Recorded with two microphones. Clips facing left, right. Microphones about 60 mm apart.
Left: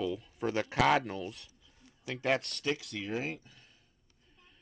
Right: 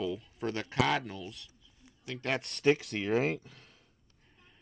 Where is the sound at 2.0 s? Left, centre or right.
Centre.